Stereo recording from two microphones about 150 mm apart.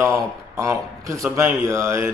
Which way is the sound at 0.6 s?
20° right (ahead or behind).